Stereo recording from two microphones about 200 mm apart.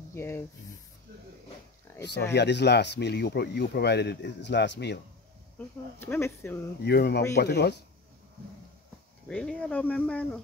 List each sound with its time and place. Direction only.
0.1 s speech: 10° left (ahead or behind)
1.9 s a sound: 10° left (ahead or behind)
2.3 s speech: 60° left (ahead or behind)
5.9 s speech: 10° left (ahead or behind)
6.8 s speech: 55° left (ahead or behind)
9.3 s speech: 5° left (ahead or behind)